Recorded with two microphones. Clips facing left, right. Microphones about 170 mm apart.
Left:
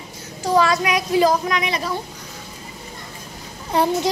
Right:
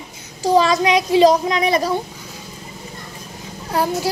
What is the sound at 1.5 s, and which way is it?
Speech, 40° right (ahead or behind).